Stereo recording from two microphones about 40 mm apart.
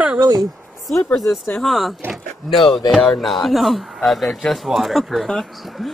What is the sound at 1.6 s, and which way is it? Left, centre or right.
Speech, centre.